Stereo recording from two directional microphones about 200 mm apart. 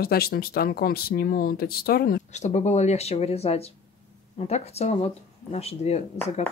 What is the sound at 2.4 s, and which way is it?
Speech, 35° left (ahead or behind).